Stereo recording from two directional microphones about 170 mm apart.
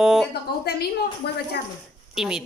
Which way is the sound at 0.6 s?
70° left (ahead or behind).